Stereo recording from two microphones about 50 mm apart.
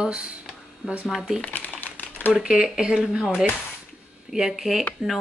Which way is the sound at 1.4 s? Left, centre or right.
Left.